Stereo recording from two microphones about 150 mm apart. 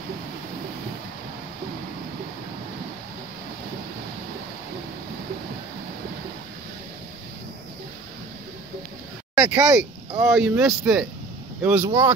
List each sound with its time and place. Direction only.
9.3 s speech: 20° right (ahead or behind)
10.3 s speech: 5° right (ahead or behind)